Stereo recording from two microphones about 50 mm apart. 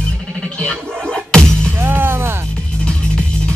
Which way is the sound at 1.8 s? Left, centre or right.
Right.